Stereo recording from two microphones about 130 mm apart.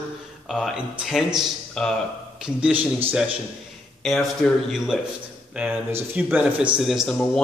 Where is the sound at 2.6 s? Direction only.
10° right (ahead or behind).